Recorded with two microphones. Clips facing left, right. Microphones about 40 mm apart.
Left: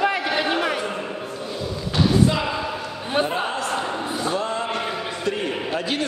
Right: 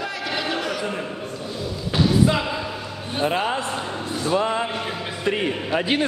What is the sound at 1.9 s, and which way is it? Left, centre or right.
Thump, centre.